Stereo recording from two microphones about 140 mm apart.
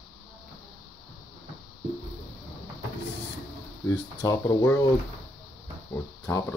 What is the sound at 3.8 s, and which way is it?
Speech, 25° left (ahead or behind).